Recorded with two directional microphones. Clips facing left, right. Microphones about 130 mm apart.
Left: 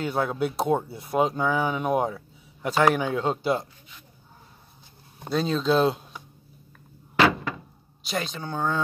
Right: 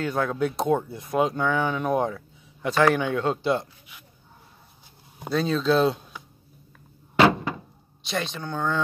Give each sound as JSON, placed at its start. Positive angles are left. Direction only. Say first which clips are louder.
{"t": 0.0, "sound": "a man's voice", "louder": "right 1 dB", "side_deg": 10}
{"t": 5.3, "sound": "speech", "louder": "right 1 dB", "side_deg": 0}
{"t": 7.2, "sound": "thunk", "louder": "right 2 dB", "side_deg": -25}
{"t": 8.1, "sound": "speech", "louder": "right 1 dB", "side_deg": 5}